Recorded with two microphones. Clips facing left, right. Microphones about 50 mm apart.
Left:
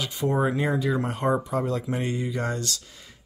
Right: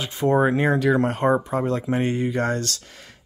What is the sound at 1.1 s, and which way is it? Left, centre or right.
Speech, right.